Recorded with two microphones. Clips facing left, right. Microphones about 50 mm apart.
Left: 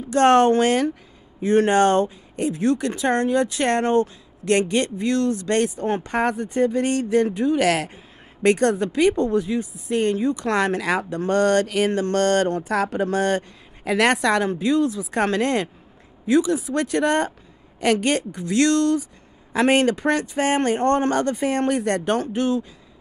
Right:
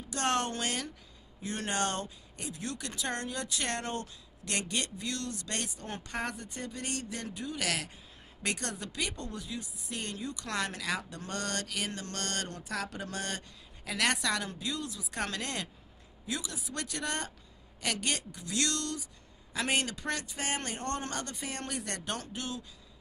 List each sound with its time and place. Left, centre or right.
0.1 s speech: left